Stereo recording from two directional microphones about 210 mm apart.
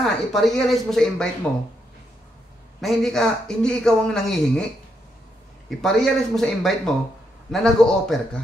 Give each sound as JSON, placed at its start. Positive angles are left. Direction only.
{"t": 0.0, "sound": "a man's voice", "side_deg": 0}
{"t": 2.8, "sound": "a man's voice", "side_deg": 0}
{"t": 5.8, "sound": "a man's voice", "side_deg": 0}